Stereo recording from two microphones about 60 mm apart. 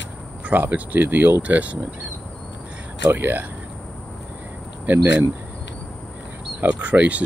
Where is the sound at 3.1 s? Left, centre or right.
Right.